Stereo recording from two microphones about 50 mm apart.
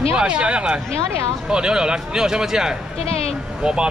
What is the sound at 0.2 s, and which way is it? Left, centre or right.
Speech, right.